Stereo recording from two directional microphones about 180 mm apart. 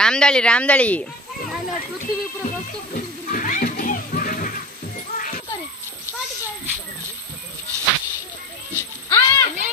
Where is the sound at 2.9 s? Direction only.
50° left (ahead or behind).